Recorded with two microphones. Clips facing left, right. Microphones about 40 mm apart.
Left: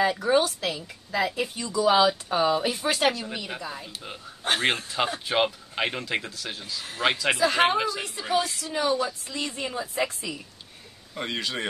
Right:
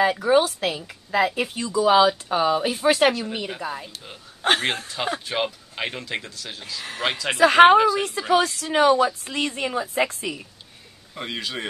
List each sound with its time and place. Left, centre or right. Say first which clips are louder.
0.2 s speech: right 4 dB; centre
0.6 s a woman's voice: right 4 dB; right
1.9 s speech: right 3 dB; centre
3.1 s speech: right 4 dB; centre
4.4 s a man's voice: right 5 dB; right
4.8 s speech: even; centre
7.3 s a woman's voice: right 14 dB; right
8.2 s a woman's voice: right 6 dB; right
8.5 s a woman's voice: right 8 dB; right
11.1 s speech: even; centre